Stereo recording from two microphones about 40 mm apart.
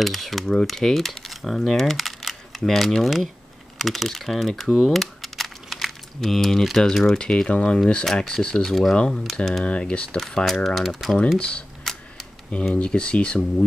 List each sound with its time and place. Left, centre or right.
0.0 s speech: centre
4.8 s crumpling: centre
7.0 s speech: centre
8.0 s speech: centre
8.6 s speech: centre
9.7 s speech: left
10.4 s speech: centre
11.3 s speech: left
11.9 s a sound: centre
12.7 s speech: left